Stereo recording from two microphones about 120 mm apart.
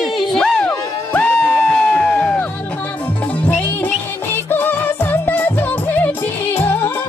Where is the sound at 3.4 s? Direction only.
15° left (ahead or behind).